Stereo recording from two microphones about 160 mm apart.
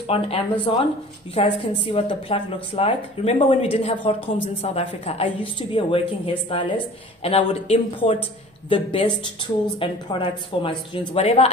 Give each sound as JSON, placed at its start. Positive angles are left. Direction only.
{"t": 0.1, "sound": "a woman's voice", "side_deg": 35}